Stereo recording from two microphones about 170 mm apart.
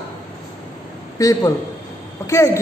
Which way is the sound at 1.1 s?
20° left (ahead or behind).